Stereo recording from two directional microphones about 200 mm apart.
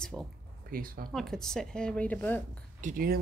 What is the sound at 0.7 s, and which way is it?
Speech, 45° right (ahead or behind).